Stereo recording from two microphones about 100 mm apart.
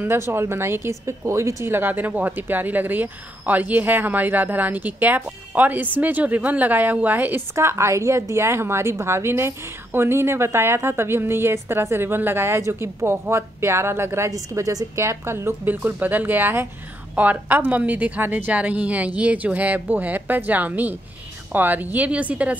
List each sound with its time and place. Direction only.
0.0 s a woman's voice: 25° right (ahead or behind)